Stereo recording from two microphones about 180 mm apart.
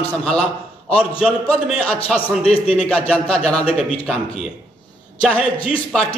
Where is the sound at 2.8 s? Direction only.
5° left (ahead or behind).